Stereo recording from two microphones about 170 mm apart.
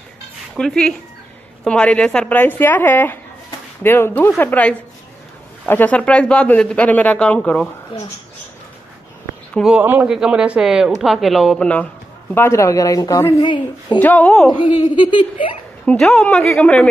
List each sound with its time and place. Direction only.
0.6 s speech: 5° left (ahead or behind)
9.5 s speech: centre (ahead or behind)
9.8 s speech: 10° right (ahead or behind); by 13.9 s 25° left (ahead or behind)
13.9 s speech: 10° left (ahead or behind)
14.5 s speech: 25° left (ahead or behind)
15.8 s speech: 5° left (ahead or behind)